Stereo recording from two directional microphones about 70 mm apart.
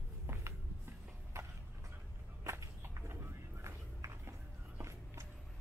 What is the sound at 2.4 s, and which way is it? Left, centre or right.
Walk, right.